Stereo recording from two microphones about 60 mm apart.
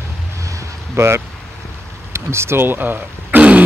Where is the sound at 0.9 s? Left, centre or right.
Right.